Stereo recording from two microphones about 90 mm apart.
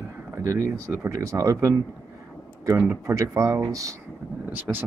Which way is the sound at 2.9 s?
30° right (ahead or behind).